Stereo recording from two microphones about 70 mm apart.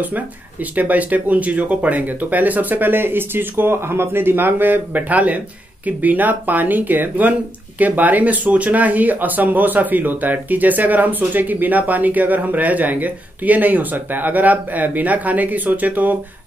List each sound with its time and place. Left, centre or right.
0.0 s speech: right